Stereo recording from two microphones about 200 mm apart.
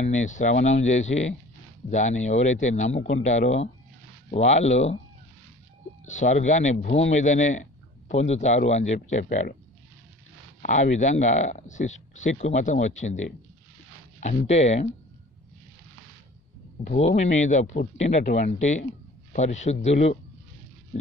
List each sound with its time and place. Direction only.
0.0 s speech: 35° left (ahead or behind)
6.0 s speech: 35° left (ahead or behind)
10.6 s speech: 35° left (ahead or behind)
16.8 s speech: 35° left (ahead or behind)